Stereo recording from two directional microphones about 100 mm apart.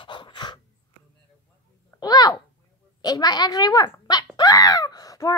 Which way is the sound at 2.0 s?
40° left (ahead or behind).